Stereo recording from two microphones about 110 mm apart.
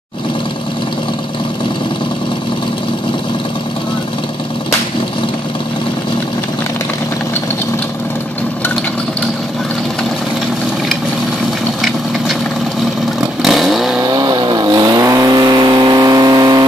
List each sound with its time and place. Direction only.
13.4 s vehicle: centre (ahead or behind)
14.0 s vehicle: 40° right (ahead or behind)